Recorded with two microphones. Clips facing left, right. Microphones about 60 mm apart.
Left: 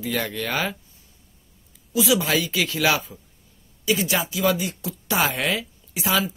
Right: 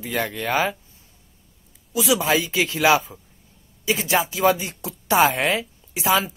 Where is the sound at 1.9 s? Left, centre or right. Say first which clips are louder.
Right 1 dB; right.